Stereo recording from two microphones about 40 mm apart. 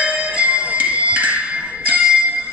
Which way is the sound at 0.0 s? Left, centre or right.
Right.